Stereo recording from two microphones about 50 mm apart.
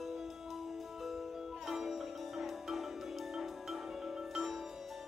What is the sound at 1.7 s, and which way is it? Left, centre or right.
Music, centre.